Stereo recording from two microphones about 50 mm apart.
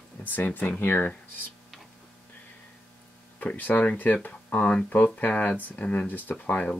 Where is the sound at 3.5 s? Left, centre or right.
Left.